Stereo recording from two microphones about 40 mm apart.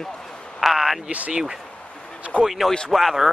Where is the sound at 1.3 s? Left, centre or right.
Centre.